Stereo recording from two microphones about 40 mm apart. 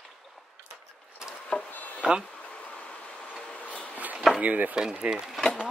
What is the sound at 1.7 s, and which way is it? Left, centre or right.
Insect, left.